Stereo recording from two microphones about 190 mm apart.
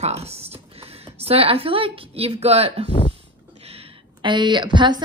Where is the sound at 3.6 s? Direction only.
30° right (ahead or behind).